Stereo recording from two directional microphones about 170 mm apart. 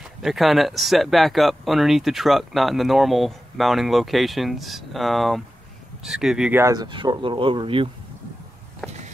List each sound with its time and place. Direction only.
0.2 s speech: centre (ahead or behind)
6.6 s speech: 25° right (ahead or behind)
8.8 s walk: 5° left (ahead or behind)